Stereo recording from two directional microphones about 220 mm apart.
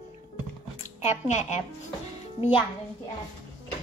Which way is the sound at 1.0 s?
30° left (ahead or behind).